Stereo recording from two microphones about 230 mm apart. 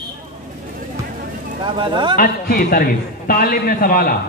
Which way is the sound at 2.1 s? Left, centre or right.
Left.